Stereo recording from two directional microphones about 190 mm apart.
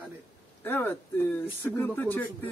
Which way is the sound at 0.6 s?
10° left (ahead or behind).